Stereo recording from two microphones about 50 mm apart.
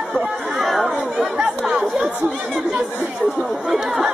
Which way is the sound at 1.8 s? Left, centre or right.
Right.